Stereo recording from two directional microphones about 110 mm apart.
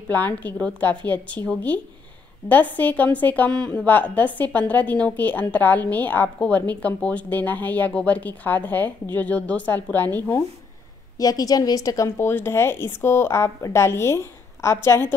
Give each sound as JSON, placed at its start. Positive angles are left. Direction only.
{"t": 0.1, "sound": "a woman's voice", "side_deg": 15}
{"t": 11.1, "sound": "a woman's voice", "side_deg": 35}